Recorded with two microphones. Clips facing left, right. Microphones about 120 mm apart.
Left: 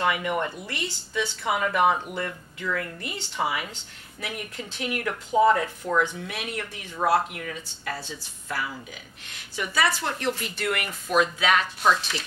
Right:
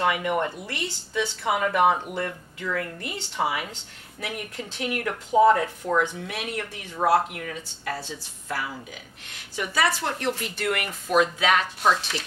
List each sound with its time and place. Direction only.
0.0 s speech: 45° right (ahead or behind)
3.0 s speech: 50° right (ahead or behind)
5.1 s speech: 35° right (ahead or behind)
7.0 s speech: 35° right (ahead or behind)
11.6 s speech: 35° right (ahead or behind)